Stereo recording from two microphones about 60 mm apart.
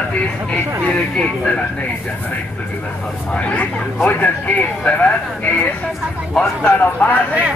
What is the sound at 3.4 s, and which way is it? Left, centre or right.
Speech, left.